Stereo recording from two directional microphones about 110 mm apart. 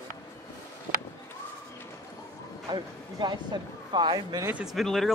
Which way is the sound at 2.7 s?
40° right (ahead or behind).